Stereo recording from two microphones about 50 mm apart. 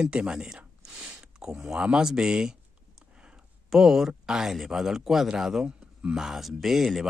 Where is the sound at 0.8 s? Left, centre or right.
Centre.